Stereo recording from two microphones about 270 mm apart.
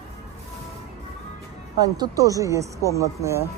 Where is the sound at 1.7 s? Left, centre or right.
Centre.